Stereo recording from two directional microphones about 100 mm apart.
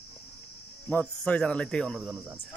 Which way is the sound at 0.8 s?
15° left (ahead or behind).